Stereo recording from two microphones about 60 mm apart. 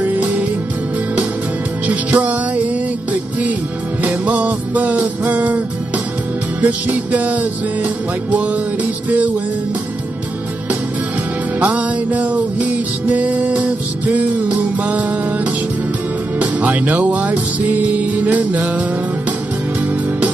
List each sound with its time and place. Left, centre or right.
0.0 s music: right
1.9 s music: right
6.6 s music: right
11.6 s music: right